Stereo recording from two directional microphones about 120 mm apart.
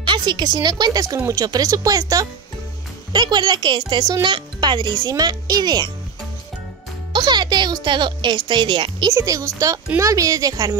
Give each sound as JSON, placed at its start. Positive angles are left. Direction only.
{"t": 0.0, "sound": "speech", "side_deg": -40}
{"t": 7.1, "sound": "speech", "side_deg": -40}
{"t": 9.1, "sound": "speech", "side_deg": -30}